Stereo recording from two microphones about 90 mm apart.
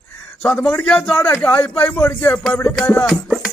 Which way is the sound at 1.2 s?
25° left (ahead or behind).